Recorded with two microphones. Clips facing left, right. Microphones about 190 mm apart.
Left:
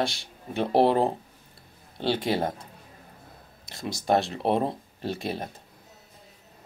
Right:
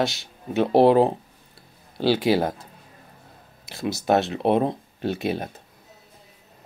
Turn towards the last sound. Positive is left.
turn(degrees=0)  # may be behind; listen again after turning